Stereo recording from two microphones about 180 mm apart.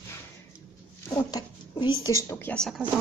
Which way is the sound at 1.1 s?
20° left (ahead or behind).